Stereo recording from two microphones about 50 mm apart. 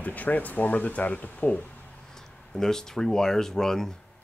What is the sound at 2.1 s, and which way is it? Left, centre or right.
Speech, centre.